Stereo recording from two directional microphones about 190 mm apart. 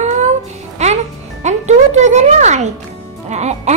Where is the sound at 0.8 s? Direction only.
35° right (ahead or behind).